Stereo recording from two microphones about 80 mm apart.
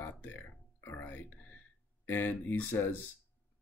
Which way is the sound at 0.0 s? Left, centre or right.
Left.